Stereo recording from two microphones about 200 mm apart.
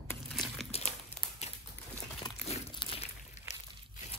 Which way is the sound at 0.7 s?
30° left (ahead or behind).